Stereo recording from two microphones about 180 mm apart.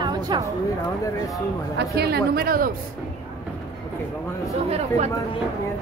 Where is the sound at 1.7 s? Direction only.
65° right (ahead or behind).